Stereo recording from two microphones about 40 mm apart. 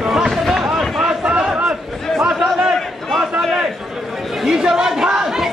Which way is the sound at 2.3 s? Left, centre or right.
Right.